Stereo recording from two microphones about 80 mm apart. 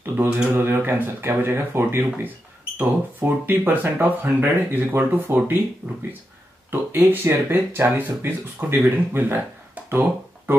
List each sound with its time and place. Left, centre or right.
0.0 s a sound: right
0.6 s speech: right
5.8 s speech: centre
6.7 s speech: right